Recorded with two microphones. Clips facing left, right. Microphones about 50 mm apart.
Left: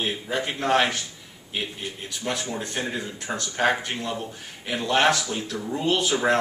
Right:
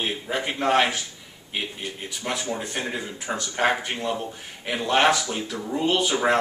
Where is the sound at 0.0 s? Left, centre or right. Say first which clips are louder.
Even; centre.